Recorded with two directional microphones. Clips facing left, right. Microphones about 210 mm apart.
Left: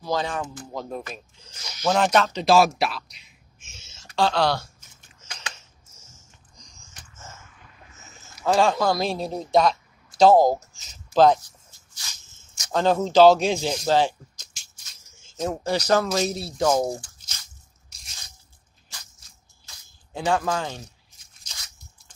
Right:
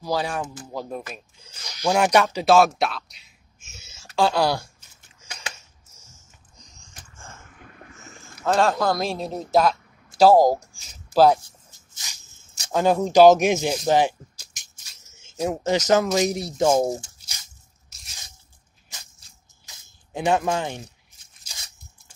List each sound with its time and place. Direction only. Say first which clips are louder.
0.0 s speech: right 1 dB; 10° right (ahead or behind)
2.5 s speech: right 1 dB; centre (ahead or behind)
6.6 s a sound: right 2 dB; centre (ahead or behind)
7.6 s boat: right 6 dB; 60° right (ahead or behind)
8.5 s a man's voice: even; centre (ahead or behind)
11.4 s dog: right 1 dB; 20° right (ahead or behind)
12.7 s speech: right 1 dB; 10° right (ahead or behind)
13.8 s music: right 1 dB; 15° right (ahead or behind)
15.3 s speech: right 3 dB; 15° right (ahead or behind)
17.8 s squish: right 1 dB; centre (ahead or behind)
19.6 s squish: right 1 dB; 20° right (ahead or behind)